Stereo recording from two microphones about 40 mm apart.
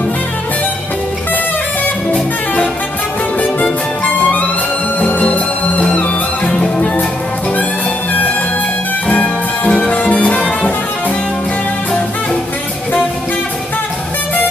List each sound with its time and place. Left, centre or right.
3.3 s music: left
5.0 s music: left
9.0 s music: left